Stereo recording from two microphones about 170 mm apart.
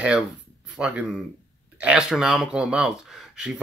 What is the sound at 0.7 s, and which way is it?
Speech, 5° right (ahead or behind).